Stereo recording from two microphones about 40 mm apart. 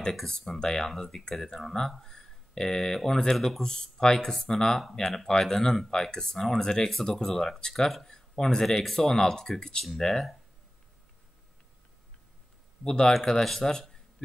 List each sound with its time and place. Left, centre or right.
0.3 s speech: centre
3.6 s speech: centre
12.8 s speech: centre